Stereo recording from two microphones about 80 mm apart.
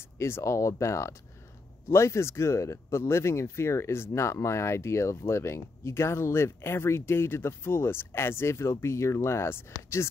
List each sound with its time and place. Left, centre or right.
0.2 s speech: left